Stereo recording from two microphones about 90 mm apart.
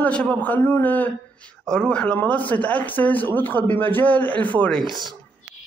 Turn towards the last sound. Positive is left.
turn(degrees=15)  # may be behind; listen again after turning